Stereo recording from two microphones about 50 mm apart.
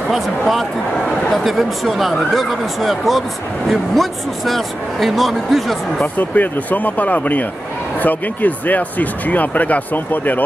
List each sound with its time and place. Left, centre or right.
0.1 s speech: centre
6.1 s speech: left